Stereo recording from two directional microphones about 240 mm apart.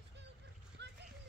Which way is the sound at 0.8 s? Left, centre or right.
Right.